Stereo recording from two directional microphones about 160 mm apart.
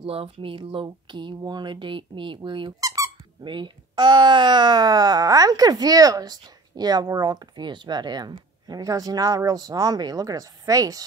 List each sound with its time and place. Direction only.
0.0 s speech: 35° right (ahead or behind)